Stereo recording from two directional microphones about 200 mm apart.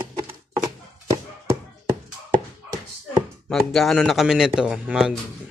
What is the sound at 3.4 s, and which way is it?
Speech, centre (ahead or behind).